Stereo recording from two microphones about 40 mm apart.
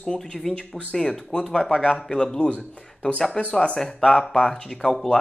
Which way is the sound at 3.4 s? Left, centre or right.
Left.